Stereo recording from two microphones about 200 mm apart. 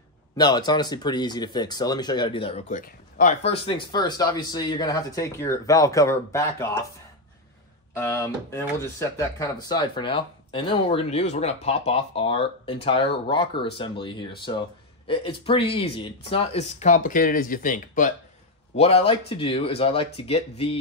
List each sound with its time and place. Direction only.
0.4 s speech: 20° left (ahead or behind)
2.7 s speech: 40° left (ahead or behind); by 6.8 s 15° left (ahead or behind)
7.9 s speech: 15° left (ahead or behind); by 18.1 s 40° left (ahead or behind)
18.8 s speech: 30° left (ahead or behind)